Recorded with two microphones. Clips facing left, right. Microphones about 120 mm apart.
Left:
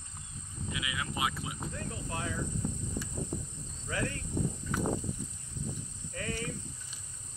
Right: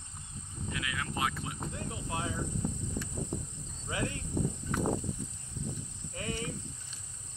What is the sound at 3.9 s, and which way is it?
Speech, 20° right (ahead or behind).